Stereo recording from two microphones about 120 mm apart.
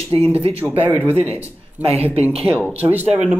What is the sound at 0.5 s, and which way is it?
Speech, 15° right (ahead or behind).